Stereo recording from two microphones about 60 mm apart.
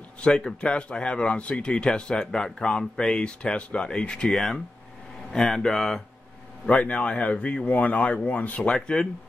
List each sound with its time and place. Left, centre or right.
0.2 s speech: centre
6.7 s speech: left